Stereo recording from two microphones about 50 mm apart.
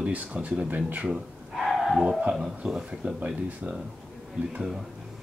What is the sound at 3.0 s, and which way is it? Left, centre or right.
Speech, right.